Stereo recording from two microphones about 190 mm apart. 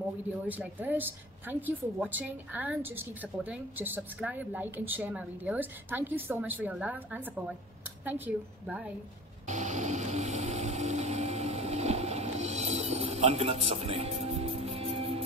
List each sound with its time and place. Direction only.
0.5 s a woman's voice: 10° right (ahead or behind)
8.6 s a woman's voice: 5° right (ahead or behind)
9.5 s vehicle: 40° right (ahead or behind)